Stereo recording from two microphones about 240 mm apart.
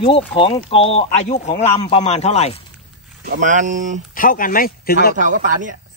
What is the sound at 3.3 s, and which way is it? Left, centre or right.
Speech, right.